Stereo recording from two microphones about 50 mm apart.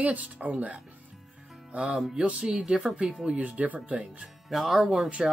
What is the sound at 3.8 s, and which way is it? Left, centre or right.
Speech, right.